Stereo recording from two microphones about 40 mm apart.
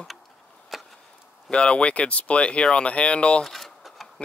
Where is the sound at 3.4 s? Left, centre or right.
Centre.